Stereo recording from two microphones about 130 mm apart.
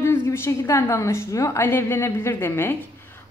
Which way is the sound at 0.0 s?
20° left (ahead or behind).